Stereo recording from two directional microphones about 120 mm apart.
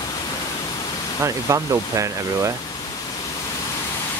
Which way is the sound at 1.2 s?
25° right (ahead or behind).